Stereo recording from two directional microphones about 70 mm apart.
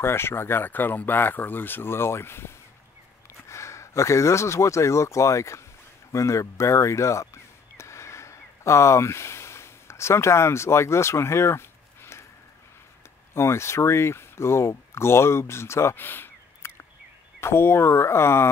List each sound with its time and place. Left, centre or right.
0.0 s speech: left
6.1 s a sound: left
13.3 s speech: left